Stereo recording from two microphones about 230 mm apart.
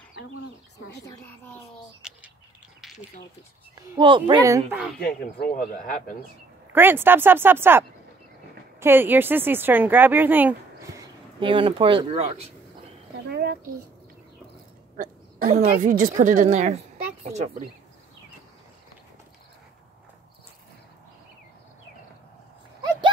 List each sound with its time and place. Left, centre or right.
0.7 s speech: left
1.0 s speech: centre
2.0 s bird: centre
2.8 s a sound: centre
4.0 s speech: right
5.0 s speech: left
6.7 s speech: centre; by 12.4 s right
13.3 s a child's voice: right
15.0 s speech: right